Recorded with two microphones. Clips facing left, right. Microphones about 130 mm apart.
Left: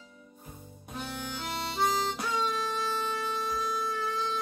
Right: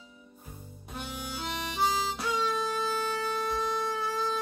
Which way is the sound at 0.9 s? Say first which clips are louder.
Left 1 dB; 10° right (ahead or behind).